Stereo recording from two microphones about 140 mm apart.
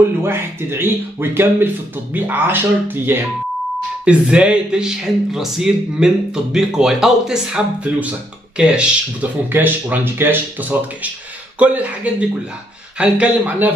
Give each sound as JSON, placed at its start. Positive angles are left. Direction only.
{"t": 0.2, "sound": "speech", "side_deg": -15}